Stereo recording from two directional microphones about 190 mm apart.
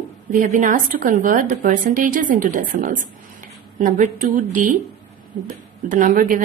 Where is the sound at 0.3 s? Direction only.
45° right (ahead or behind).